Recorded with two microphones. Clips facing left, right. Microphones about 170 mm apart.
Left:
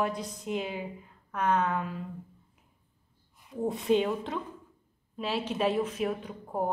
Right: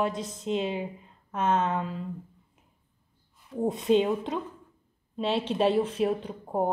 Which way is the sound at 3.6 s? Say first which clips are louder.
Right 3 dB; 20° right (ahead or behind).